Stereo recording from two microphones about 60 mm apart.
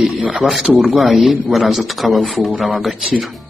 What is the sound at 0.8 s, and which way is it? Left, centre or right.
Speech, centre.